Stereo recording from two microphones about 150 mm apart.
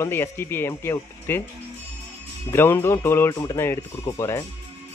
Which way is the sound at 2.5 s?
15° left (ahead or behind).